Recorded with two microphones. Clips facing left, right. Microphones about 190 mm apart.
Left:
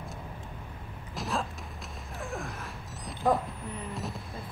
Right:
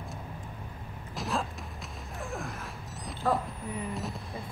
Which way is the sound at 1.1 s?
Centre (ahead or behind).